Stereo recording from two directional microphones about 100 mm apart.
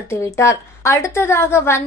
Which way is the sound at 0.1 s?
30° left (ahead or behind).